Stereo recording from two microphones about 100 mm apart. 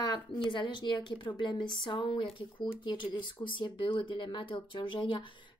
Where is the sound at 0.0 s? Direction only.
50° left (ahead or behind).